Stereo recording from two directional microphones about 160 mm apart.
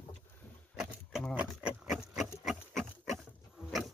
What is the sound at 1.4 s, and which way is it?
Pig, 10° right (ahead or behind).